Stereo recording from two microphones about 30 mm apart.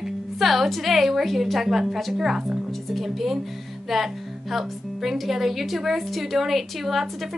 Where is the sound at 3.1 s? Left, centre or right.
Centre.